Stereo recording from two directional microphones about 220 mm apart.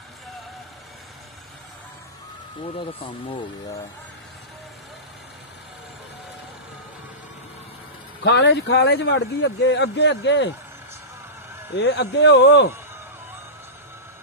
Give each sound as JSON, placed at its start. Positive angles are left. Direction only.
{"t": 2.6, "sound": "speech", "side_deg": 25}
{"t": 8.2, "sound": "speech", "side_deg": 50}
{"t": 11.7, "sound": "speech", "side_deg": 50}